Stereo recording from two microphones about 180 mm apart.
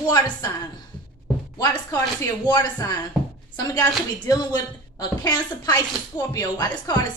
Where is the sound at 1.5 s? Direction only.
20° left (ahead or behind).